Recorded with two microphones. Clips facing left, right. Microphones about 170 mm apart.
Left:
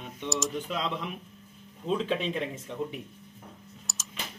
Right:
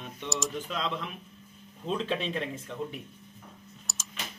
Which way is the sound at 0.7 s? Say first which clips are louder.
Left 1 dB; 10° left (ahead or behind).